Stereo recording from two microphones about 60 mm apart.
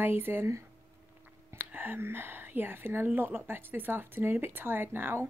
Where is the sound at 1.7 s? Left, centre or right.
Right.